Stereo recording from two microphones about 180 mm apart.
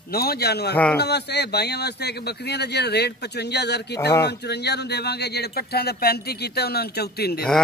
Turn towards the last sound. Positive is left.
turn(degrees=60)  # may be behind; listen again after turning